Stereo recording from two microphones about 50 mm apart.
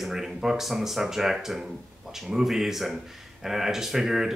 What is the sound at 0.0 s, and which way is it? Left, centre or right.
Speech, centre.